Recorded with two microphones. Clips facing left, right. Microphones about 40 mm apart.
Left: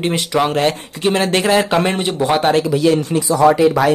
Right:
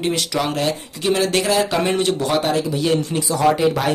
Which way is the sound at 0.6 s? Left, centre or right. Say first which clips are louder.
Left 5 dB; left.